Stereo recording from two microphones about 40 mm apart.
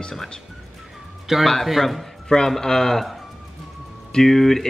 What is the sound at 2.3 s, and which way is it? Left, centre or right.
Speech, centre.